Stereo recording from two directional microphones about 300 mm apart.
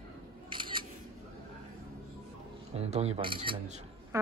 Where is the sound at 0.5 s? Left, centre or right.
Centre.